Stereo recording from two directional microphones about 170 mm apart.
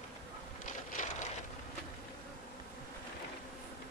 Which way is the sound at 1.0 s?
50° left (ahead or behind).